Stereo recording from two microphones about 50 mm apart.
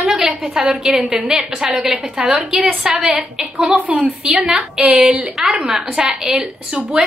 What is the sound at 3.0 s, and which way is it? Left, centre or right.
Speech, right.